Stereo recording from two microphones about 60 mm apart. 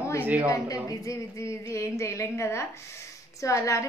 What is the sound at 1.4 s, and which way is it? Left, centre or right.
A woman's voice, left.